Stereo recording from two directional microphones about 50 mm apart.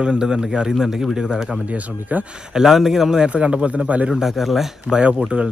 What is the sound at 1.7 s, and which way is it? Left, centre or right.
Speech, right.